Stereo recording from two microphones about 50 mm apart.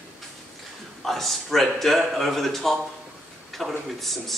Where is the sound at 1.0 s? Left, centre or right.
Centre.